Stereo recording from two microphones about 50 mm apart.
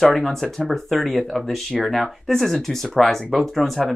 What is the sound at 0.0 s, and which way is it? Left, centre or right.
Speech, centre.